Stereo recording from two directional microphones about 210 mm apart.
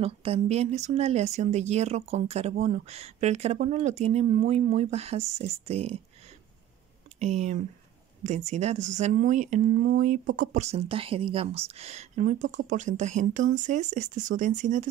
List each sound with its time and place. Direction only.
0.0 s speech: 30° right (ahead or behind)
7.2 s speech: 35° right (ahead or behind)